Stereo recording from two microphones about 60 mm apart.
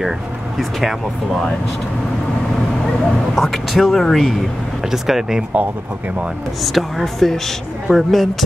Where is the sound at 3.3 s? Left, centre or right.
Centre.